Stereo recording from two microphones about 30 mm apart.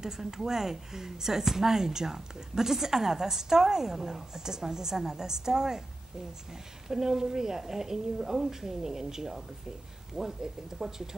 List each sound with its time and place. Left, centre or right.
0.0 s speech: centre
6.9 s speech: centre